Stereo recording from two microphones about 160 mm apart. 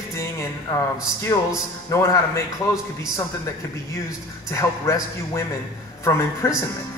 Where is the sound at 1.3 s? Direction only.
20° left (ahead or behind).